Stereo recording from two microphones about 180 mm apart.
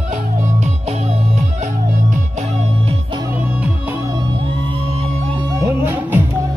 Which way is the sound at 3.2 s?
10° right (ahead or behind).